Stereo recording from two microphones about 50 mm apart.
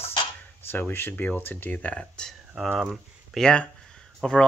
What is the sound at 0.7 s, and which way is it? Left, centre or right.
Speech, left.